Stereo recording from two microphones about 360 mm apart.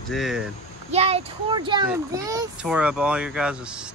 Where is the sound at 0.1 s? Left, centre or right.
Centre.